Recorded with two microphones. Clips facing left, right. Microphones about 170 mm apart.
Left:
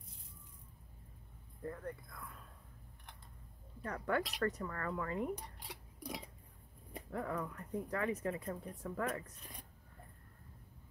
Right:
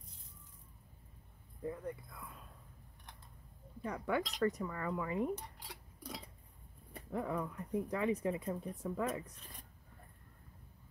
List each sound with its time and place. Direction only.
1.6 s speech: 10° right (ahead or behind)
3.8 s speech: 10° right (ahead or behind)
4.2 s speech: 5° left (ahead or behind)
4.5 s speech: 10° right (ahead or behind)
5.3 s dishes: 15° left (ahead or behind)
7.1 s speech: 15° right (ahead or behind)